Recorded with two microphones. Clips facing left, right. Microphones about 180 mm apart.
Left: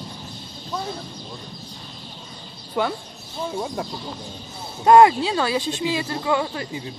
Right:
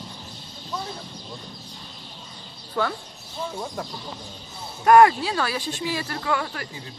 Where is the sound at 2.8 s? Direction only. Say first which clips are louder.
Left 2 dB; 20° left (ahead or behind).